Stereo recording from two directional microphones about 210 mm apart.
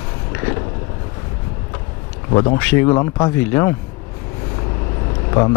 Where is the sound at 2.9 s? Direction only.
20° left (ahead or behind).